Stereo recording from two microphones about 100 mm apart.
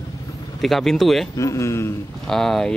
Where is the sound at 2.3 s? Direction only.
5° left (ahead or behind).